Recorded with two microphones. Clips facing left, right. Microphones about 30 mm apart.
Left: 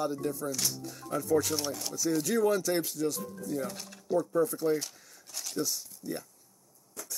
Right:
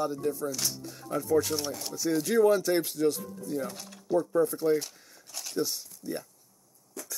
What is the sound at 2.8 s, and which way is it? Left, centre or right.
Speech, right.